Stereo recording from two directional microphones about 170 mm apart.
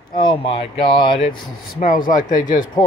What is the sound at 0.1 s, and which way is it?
Speech, 30° left (ahead or behind).